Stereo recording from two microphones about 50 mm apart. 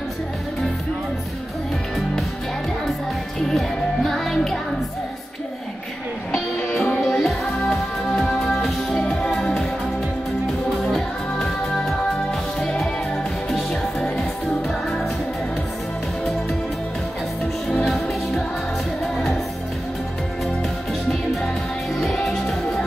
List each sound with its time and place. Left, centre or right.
3.4 s music: centre
6.7 s music: left
7.0 s music: centre
7.6 s music: centre
11.3 s music: centre
17.6 s music: centre
22.0 s music: centre